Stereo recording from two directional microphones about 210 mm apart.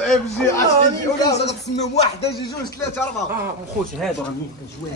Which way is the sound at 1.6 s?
30° left (ahead or behind).